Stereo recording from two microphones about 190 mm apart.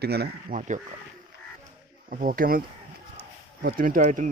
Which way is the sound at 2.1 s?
45° right (ahead or behind).